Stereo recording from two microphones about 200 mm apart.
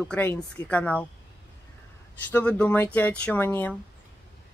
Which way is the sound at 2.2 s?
10° left (ahead or behind).